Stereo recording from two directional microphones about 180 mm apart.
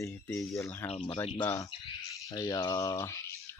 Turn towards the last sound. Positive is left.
turn(degrees=15)  # may be behind; listen again after turning